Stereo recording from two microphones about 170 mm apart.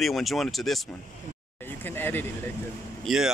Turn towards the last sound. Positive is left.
turn(degrees=0)  # may be behind; listen again after turning